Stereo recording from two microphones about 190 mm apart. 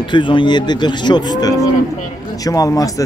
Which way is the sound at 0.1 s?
25° left (ahead or behind).